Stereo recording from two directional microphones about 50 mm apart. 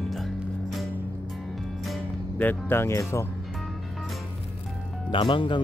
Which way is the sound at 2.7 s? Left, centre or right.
Left.